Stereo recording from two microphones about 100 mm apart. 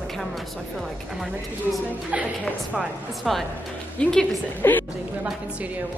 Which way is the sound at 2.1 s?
10° right (ahead or behind).